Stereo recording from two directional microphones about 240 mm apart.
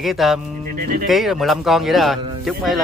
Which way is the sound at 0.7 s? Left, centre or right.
Right.